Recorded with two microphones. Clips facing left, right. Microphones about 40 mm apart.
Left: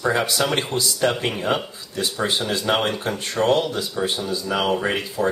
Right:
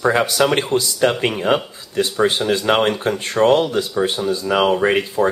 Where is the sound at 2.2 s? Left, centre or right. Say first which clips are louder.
Right 5 dB; right.